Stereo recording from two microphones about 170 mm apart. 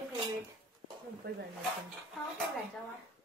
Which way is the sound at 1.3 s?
75° right (ahead or behind).